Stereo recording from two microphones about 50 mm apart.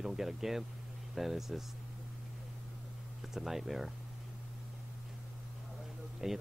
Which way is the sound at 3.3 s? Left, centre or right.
Centre.